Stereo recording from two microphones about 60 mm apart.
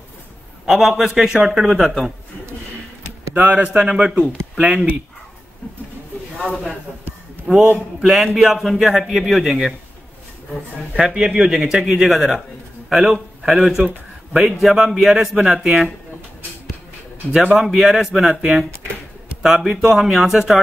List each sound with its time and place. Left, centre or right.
0.7 s speech: centre
3.3 s speech: right
7.4 s speech: centre
11.0 s a man's voice: centre
17.3 s speech: centre